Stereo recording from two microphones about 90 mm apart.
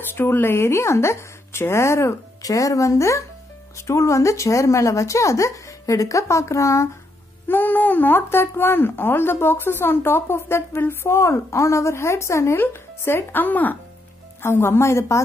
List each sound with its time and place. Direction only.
0.1 s speech: 25° left (ahead or behind)
7.4 s speech: 20° left (ahead or behind)